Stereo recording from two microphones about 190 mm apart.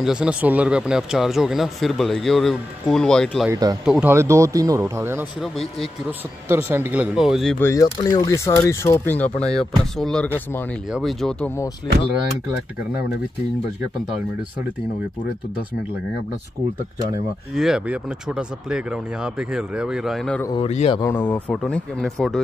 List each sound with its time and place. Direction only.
0.0 s speech: 5° right (ahead or behind)
3.4 s speech: 20° right (ahead or behind)
3.8 s speech: 5° right (ahead or behind)
4.1 s speech: 15° right (ahead or behind)
5.4 s speech: centre (ahead or behind)
6.5 s speech: 10° right (ahead or behind)
7.6 s speech: 20° left (ahead or behind); by 11.5 s centre (ahead or behind)
17.6 s speech: 5° right (ahead or behind)
20.5 s a man's voice: 35° left (ahead or behind)
21.0 s speech: 10° left (ahead or behind)